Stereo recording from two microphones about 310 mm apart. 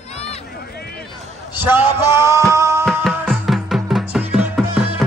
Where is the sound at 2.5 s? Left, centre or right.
Centre.